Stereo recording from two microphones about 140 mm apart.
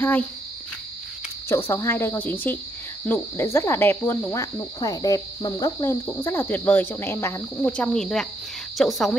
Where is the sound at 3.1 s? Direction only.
15° left (ahead or behind).